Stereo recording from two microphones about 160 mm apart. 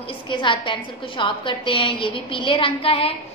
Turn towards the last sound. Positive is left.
turn(degrees=35)  # may be behind; listen again after turning